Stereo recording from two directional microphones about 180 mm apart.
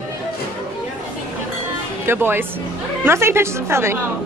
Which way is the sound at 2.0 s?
10° right (ahead or behind).